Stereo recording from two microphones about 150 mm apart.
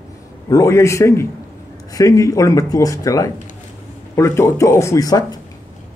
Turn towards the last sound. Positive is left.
turn(degrees=25)  # may be behind; listen again after turning